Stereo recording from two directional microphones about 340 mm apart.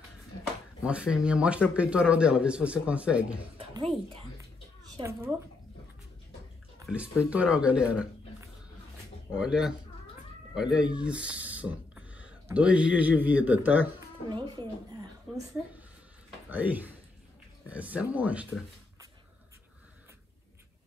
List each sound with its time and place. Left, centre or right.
0.8 s speech: centre
3.5 s speech: centre
6.8 s speech: centre
9.3 s speech: centre
16.4 s speech: centre